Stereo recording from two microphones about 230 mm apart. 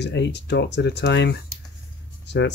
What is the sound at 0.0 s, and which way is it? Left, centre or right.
Speech, left.